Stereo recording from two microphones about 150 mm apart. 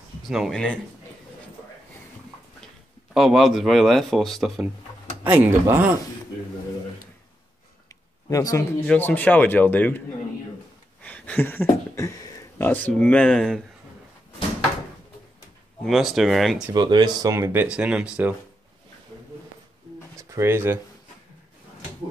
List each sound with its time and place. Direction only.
0.3 s speech: centre (ahead or behind)
2.6 s speech: centre (ahead or behind)
5.2 s speech: 10° right (ahead or behind)
8.3 s speech: 25° left (ahead or behind)
8.8 s a man's voice: 10° left (ahead or behind)
15.8 s speech: centre (ahead or behind)
16.7 s speech: 30° right (ahead or behind); by 18.3 s 10° right (ahead or behind)
20.2 s speech: 20° right (ahead or behind)